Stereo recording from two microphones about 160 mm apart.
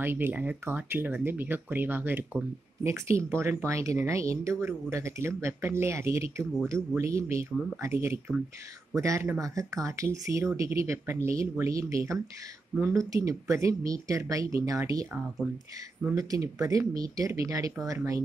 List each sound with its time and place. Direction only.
0.0 s speech: 15° right (ahead or behind)
16.2 s speech: 20° right (ahead or behind)